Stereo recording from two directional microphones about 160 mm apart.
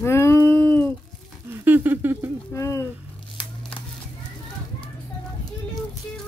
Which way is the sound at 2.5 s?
20° left (ahead or behind).